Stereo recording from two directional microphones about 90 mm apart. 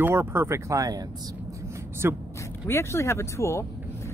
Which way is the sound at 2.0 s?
30° right (ahead or behind).